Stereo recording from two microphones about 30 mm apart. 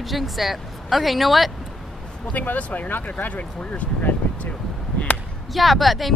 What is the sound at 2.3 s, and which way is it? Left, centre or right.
Speech, left.